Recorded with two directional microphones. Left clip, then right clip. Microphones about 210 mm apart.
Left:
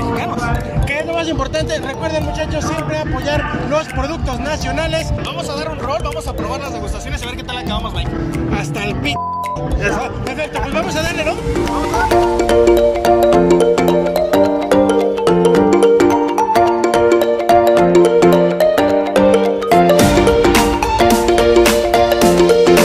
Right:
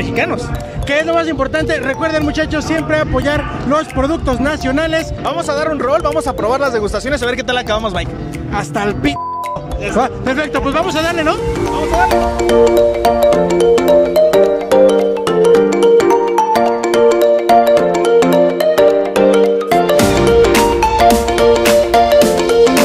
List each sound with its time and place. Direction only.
2.7 s a man's voice: 35° right (ahead or behind)
10.7 s speech: 40° right (ahead or behind)
12.1 s music: centre (ahead or behind)